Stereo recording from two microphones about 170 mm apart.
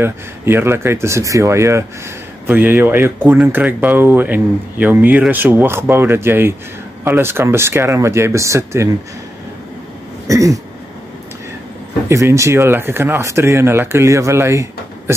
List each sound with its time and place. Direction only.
0.0 s speech: 15° right (ahead or behind)
10.2 s a sound: 20° right (ahead or behind)
12.1 s speech: 15° right (ahead or behind)